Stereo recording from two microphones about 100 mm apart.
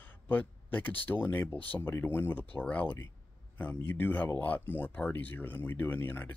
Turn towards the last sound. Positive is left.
turn(degrees=20)  # may be behind; listen again after turning